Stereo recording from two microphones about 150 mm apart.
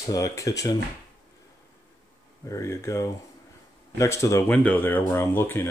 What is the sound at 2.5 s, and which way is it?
Speech, 20° left (ahead or behind).